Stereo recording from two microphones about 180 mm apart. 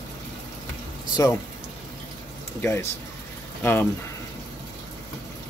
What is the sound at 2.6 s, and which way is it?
Speech, 15° left (ahead or behind).